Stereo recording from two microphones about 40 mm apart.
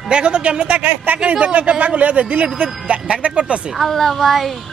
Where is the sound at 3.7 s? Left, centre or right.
Centre.